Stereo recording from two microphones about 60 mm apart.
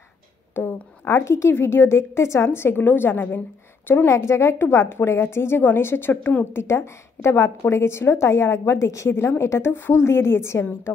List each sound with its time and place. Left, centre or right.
0.6 s a sound: left
1.5 s a woman's voice: left
4.1 s a woman's voice: left
9.1 s a woman's voice: left